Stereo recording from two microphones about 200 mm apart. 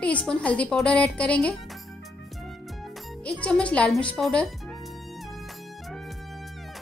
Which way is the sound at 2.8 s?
5° left (ahead or behind).